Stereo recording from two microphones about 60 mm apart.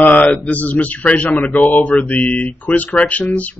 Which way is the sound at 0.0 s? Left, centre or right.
Left.